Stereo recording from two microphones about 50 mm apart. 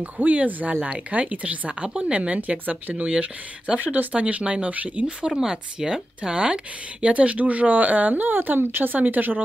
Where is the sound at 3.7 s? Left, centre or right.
Right.